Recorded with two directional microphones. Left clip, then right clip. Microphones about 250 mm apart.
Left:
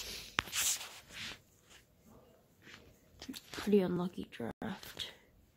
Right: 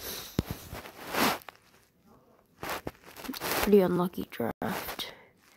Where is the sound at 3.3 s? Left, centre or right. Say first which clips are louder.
Right 9 dB; centre.